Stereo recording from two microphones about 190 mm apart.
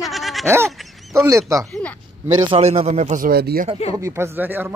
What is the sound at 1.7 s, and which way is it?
Speech, 5° left (ahead or behind).